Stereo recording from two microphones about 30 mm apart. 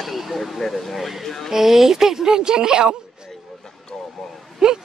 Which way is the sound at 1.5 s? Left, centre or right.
Centre.